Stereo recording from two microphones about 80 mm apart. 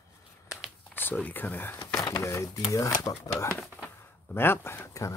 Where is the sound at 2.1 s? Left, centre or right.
Left.